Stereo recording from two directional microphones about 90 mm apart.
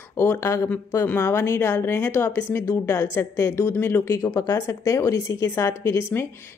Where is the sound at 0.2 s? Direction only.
30° left (ahead or behind).